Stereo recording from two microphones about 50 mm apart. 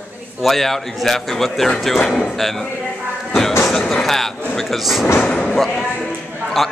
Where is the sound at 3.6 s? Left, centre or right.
Centre.